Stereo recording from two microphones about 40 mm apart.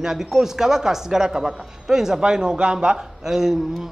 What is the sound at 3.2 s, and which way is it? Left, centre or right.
Speech, centre.